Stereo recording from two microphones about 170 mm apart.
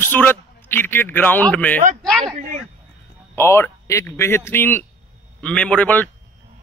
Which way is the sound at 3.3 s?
15° left (ahead or behind).